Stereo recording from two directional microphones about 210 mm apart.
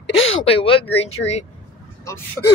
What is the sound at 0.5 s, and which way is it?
Speech, 25° left (ahead or behind).